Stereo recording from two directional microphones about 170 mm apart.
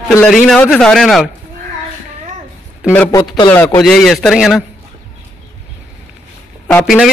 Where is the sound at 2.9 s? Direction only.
15° left (ahead or behind).